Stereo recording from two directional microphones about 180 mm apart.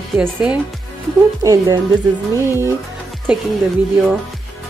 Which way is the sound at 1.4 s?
20° right (ahead or behind).